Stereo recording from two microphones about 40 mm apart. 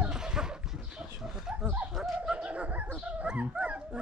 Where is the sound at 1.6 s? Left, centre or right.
Right.